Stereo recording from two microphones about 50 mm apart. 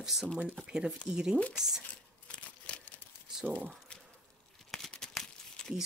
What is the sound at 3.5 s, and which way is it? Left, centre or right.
Speech, right.